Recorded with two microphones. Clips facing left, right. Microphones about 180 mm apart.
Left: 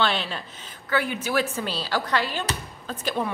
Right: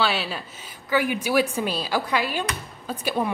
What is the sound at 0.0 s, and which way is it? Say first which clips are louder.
A woman's voice: right 1 dB; 5° right (ahead or behind).